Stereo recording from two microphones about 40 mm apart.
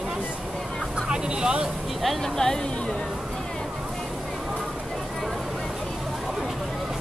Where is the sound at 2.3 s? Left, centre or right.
Centre.